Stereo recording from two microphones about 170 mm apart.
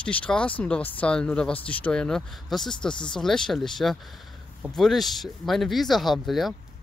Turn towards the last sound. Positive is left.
turn(degrees=0)  # may be behind; listen again after turning